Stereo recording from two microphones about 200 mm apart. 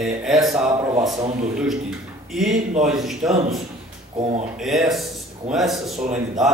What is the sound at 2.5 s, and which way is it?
Speech, 35° right (ahead or behind).